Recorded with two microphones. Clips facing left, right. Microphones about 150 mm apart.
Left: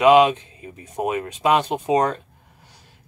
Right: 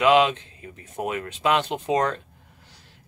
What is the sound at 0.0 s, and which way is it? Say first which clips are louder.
Speech: left 4 dB; 15° left (ahead or behind).